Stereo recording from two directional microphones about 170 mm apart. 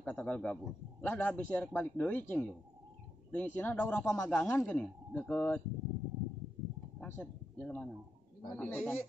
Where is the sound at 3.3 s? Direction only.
10° left (ahead or behind).